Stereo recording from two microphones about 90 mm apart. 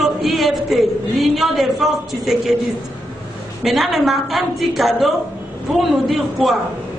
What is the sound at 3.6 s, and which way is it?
A man's voice, centre (ahead or behind).